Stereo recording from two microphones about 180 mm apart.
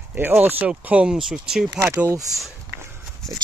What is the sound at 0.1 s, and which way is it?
Speech, 10° right (ahead or behind).